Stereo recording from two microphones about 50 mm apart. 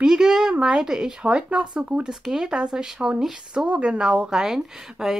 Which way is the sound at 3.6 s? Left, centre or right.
Right.